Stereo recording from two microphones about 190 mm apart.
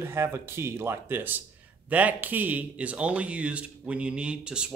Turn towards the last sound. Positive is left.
turn(degrees=-5)  # may be behind; listen again after turning